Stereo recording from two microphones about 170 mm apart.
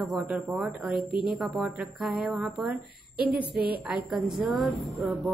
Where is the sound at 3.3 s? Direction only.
30° left (ahead or behind).